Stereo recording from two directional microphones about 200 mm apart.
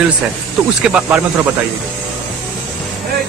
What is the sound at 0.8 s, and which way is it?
Speech, 5° right (ahead or behind).